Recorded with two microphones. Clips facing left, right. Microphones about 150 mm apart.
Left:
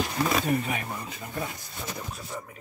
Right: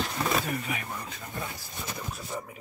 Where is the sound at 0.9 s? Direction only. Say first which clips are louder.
Left 2 dB; 5° left (ahead or behind).